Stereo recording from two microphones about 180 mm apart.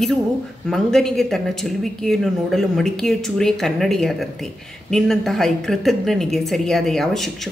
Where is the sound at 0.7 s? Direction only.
Centre (ahead or behind).